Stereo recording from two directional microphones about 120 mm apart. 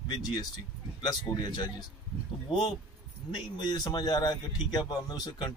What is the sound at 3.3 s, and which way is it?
A man's voice, 35° left (ahead or behind).